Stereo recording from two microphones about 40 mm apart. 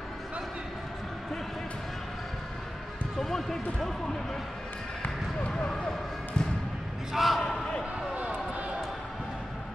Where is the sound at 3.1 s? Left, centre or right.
Centre.